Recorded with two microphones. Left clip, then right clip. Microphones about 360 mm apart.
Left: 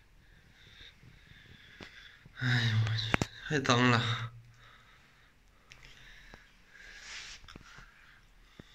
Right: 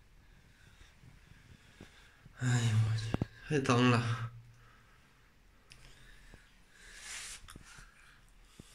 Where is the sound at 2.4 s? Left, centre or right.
Centre.